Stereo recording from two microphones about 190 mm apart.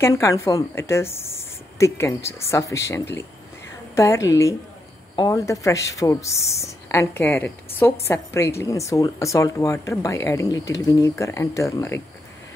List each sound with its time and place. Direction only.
0.0 s speech: 15° left (ahead or behind)